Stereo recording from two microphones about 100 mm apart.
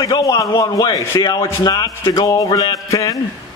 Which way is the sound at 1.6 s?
40° left (ahead or behind).